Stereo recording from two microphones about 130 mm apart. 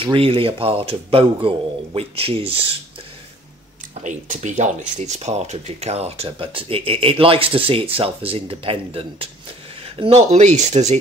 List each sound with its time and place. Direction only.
0.0 s speech: 45° right (ahead or behind)
4.0 s speech: 70° right (ahead or behind); by 10.4 s 50° right (ahead or behind)
10.4 s speech: 65° right (ahead or behind)